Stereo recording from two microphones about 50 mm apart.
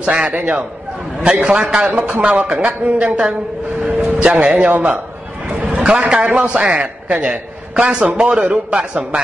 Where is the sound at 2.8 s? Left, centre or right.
Right.